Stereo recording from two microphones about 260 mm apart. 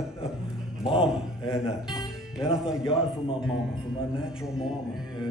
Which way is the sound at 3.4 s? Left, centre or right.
Centre.